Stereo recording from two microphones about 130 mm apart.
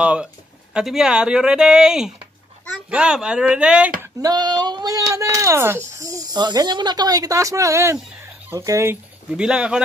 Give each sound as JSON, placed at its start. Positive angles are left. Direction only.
{"t": 0.0, "sound": "speech", "side_deg": -10}
{"t": 4.0, "sound": "speech", "side_deg": -30}
{"t": 9.3, "sound": "speech", "side_deg": -10}